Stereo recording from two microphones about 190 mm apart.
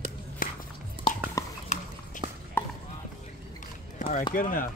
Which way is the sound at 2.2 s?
25° right (ahead or behind).